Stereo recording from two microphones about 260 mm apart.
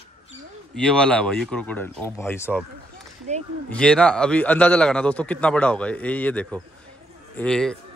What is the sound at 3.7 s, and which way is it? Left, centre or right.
A man's voice, centre.